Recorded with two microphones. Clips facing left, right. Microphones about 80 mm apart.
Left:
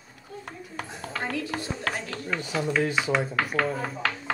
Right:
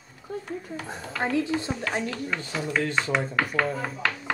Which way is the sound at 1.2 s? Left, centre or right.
Right.